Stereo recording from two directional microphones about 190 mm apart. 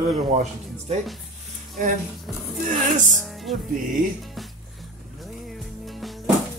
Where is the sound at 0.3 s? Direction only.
35° right (ahead or behind).